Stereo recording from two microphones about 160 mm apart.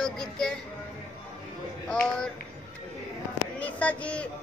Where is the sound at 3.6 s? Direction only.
10° left (ahead or behind).